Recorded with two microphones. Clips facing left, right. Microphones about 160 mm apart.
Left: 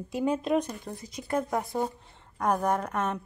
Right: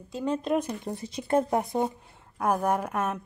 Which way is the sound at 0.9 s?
25° right (ahead or behind).